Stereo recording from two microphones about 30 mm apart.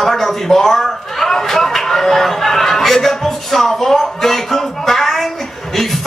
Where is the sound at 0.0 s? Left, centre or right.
Centre.